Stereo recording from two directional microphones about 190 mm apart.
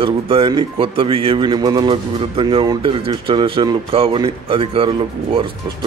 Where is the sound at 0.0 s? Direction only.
30° right (ahead or behind).